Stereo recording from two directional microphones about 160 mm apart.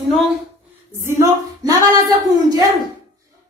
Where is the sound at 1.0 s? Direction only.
15° right (ahead or behind).